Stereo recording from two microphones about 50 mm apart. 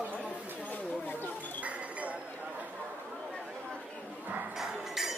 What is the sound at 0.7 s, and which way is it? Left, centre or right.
Speech, left.